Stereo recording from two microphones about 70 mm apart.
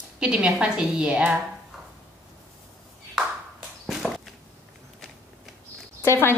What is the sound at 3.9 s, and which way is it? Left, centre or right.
Walk, centre.